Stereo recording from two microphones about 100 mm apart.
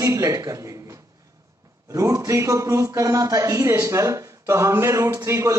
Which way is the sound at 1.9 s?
30° right (ahead or behind).